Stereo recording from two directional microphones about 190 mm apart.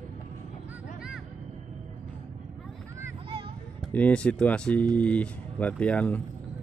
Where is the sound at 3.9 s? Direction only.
5° left (ahead or behind).